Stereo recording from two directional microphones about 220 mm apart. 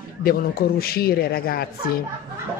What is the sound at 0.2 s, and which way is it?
Speech, 40° left (ahead or behind).